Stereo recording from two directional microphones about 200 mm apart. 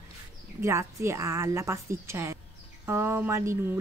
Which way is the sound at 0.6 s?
15° right (ahead or behind).